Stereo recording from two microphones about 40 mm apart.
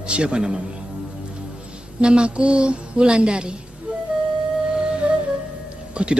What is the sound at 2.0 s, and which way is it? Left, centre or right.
A woman's voice, right.